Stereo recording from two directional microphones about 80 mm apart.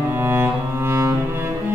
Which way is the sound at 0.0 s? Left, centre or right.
Right.